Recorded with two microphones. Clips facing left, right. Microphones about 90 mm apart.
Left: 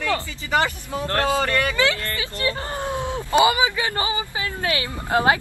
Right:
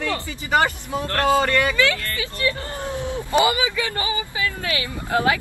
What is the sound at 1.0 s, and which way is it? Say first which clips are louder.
Speech: right 2 dB; 25° left (ahead or behind).